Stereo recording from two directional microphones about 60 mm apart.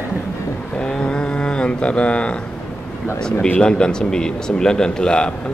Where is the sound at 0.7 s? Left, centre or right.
Centre.